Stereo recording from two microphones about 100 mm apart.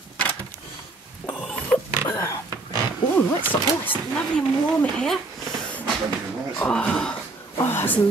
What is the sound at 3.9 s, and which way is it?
Speech, 10° left (ahead or behind).